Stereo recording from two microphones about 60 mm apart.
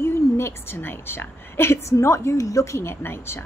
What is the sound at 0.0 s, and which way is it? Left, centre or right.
A woman's voice, left.